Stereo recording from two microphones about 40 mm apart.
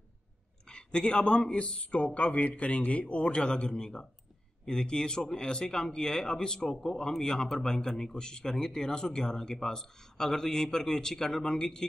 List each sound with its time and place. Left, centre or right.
0.7 s speech: left